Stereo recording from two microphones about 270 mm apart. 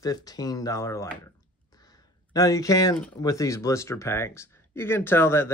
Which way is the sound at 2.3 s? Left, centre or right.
Centre.